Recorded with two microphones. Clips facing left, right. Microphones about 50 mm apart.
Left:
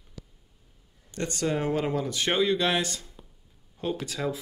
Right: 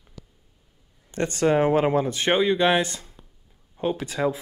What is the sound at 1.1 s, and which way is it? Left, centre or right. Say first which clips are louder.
Speech: right 7 dB; right.